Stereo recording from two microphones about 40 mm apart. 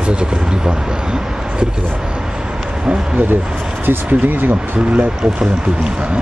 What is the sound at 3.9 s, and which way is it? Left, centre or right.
Speech, right.